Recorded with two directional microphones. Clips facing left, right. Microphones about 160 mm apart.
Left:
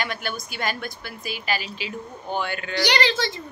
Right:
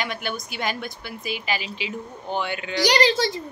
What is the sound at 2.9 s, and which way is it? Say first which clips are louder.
Speech: right 4 dB; 40° right (ahead or behind).